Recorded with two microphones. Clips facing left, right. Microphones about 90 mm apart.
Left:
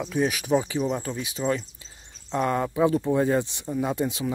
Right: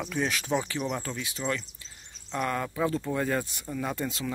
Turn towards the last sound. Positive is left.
turn(degrees=20)  # may be behind; listen again after turning